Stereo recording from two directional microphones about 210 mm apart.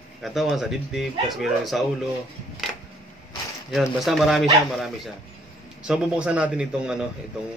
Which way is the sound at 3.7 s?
Centre (ahead or behind).